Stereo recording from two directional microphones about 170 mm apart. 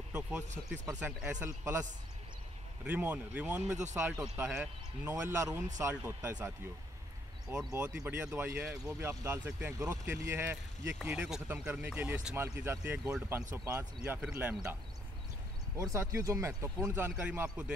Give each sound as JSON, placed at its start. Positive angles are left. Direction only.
{"t": 0.1, "sound": "speech", "side_deg": -5}
{"t": 7.5, "sound": "speech", "side_deg": -10}